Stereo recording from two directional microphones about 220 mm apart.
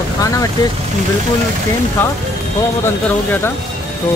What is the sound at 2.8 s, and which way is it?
Speech, 10° left (ahead or behind).